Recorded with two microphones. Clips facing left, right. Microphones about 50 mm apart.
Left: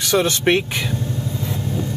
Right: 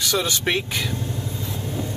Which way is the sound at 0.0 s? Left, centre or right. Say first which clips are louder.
Left 5 dB; left.